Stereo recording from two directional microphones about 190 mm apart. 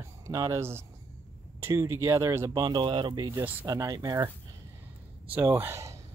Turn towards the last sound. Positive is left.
turn(degrees=-15)  # may be behind; listen again after turning